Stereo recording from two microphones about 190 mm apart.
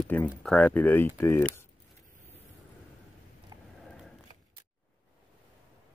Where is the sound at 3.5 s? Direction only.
20° right (ahead or behind).